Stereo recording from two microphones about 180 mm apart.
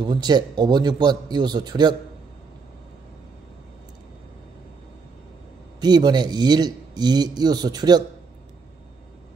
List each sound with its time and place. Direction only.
0.0 s speech: 25° right (ahead or behind)
5.8 s speech: 25° right (ahead or behind)